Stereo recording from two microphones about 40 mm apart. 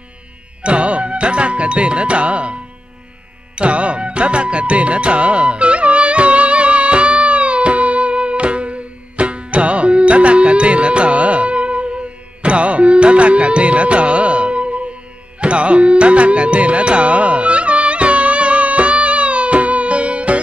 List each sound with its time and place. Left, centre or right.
0.6 s music: right